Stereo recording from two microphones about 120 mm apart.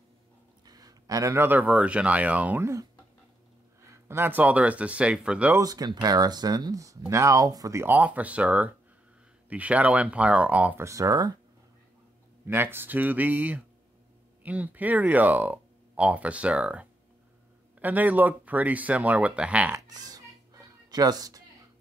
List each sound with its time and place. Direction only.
0.7 s speech: 35° right (ahead or behind); by 2.7 s 15° right (ahead or behind)
4.1 s speech: 15° right (ahead or behind)
5.6 s speech: 30° right (ahead or behind); by 10.8 s 10° right (ahead or behind)
10.8 s speech: 25° right (ahead or behind)
12.4 s speech: 20° right (ahead or behind)
19.7 s music: 30° right (ahead or behind)